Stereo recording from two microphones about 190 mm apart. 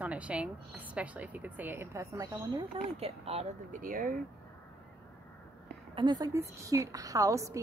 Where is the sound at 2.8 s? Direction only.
30° right (ahead or behind).